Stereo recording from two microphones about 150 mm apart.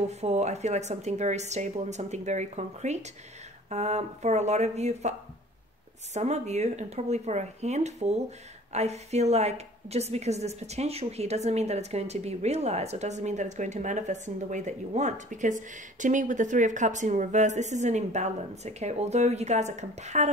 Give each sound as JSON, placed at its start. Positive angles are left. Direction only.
{"t": 0.1, "sound": "a woman's voice", "side_deg": -45}
{"t": 6.1, "sound": "a woman's voice", "side_deg": -50}